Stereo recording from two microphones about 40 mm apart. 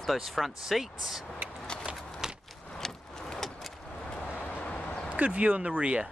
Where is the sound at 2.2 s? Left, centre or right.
Centre.